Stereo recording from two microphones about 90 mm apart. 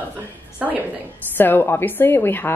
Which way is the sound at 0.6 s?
20° right (ahead or behind).